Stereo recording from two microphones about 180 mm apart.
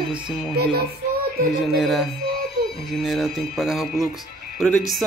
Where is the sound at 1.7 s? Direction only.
Centre (ahead or behind).